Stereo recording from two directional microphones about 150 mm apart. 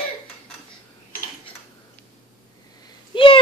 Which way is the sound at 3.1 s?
35° left (ahead or behind).